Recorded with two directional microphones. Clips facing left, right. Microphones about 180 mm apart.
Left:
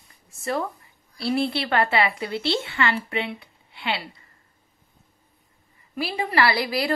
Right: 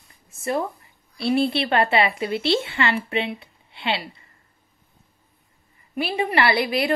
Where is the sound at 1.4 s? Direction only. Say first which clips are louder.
Right 2 dB; 20° right (ahead or behind).